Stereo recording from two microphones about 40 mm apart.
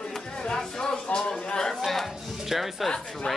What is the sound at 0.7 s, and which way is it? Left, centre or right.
Speech, centre.